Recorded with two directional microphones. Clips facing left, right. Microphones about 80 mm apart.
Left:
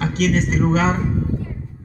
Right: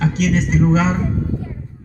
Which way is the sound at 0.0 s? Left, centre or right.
Left.